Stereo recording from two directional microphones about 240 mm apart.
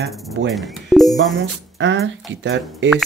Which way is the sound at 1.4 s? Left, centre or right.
Right.